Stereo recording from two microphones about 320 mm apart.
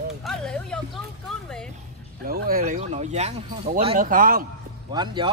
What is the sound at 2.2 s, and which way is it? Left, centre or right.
Speech, right.